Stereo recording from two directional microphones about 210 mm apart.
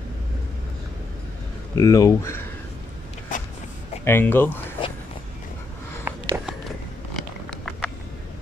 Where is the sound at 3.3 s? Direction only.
40° left (ahead or behind).